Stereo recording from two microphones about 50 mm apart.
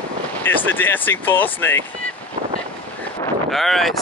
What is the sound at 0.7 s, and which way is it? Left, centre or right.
Speech, left.